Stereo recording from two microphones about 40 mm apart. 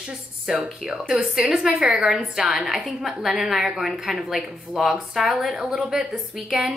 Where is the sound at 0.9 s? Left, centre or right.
Centre.